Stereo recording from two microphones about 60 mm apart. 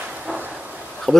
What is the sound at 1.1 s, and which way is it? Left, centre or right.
Speech, centre.